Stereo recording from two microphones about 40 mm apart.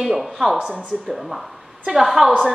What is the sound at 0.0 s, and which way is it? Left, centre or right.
Speech, centre.